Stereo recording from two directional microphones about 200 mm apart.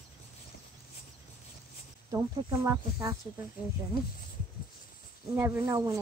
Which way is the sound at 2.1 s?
15° right (ahead or behind).